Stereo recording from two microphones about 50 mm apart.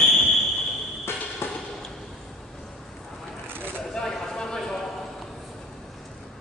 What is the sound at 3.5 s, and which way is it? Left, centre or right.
Vehicle, right.